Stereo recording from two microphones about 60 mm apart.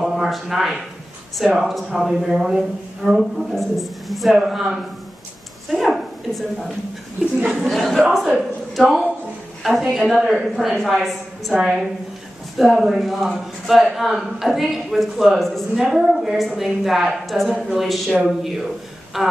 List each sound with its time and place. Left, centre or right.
0.0 s a man's voice: centre
5.7 s a sound: centre
7.6 s a man's voice: centre